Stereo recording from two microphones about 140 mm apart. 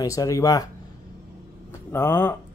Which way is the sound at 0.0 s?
25° left (ahead or behind).